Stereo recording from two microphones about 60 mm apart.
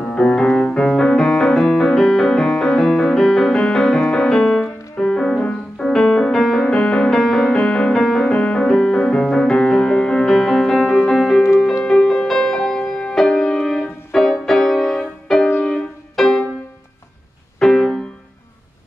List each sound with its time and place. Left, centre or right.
0.0 s music: centre
17.6 s music: centre